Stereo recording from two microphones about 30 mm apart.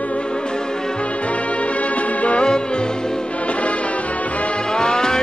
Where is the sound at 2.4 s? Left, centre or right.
Left.